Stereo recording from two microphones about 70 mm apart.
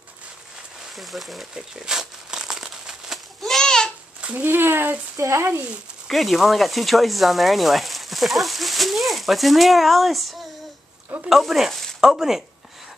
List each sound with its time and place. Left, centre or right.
0.9 s speech: centre
1.5 s crumpling: centre
4.2 s a sound: centre
4.5 s speech: right
5.1 s speech: right
6.0 s speech: centre